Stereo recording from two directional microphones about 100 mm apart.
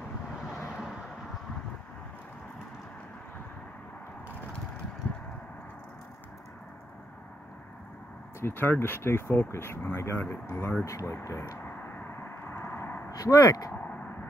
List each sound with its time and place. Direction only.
8.4 s speech: 25° left (ahead or behind)
11.6 s vehicle: 20° left (ahead or behind)
13.1 s speech: 35° left (ahead or behind)